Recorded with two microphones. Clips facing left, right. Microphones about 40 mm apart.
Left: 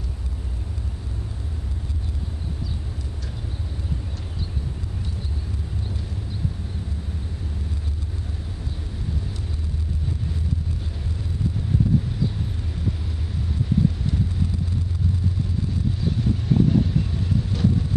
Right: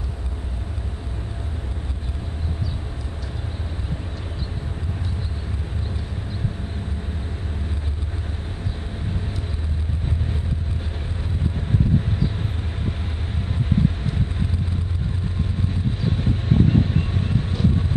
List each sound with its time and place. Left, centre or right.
13.7 s vehicle: right
16.0 s vehicle: right